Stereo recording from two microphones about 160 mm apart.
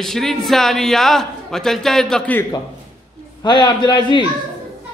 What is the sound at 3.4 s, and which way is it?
Speech, 30° left (ahead or behind).